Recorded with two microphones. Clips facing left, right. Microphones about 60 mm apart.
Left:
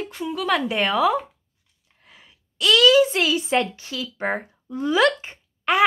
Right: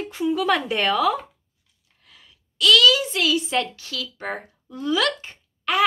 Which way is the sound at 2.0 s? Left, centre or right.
Left.